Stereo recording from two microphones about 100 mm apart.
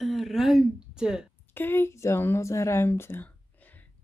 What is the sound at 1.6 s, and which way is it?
Speech, 25° left (ahead or behind).